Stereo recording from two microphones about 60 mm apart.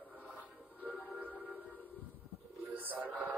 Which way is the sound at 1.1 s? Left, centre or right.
Right.